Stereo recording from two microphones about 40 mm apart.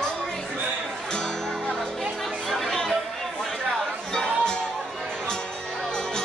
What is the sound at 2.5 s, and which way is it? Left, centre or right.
Chatter, centre.